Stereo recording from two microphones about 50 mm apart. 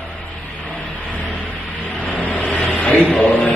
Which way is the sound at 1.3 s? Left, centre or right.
Left.